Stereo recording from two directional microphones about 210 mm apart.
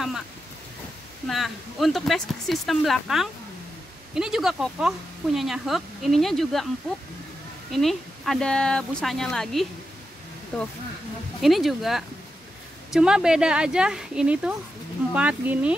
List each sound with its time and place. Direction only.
1.2 s a woman's voice: centre (ahead or behind)
7.7 s a woman's voice: centre (ahead or behind)